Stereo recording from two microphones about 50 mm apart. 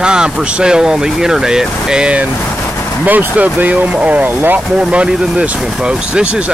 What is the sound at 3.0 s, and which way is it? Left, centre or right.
Speech, right.